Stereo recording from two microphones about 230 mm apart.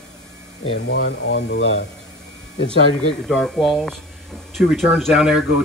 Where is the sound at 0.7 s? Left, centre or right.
Left.